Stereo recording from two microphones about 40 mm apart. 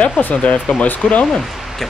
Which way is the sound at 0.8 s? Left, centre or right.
Left.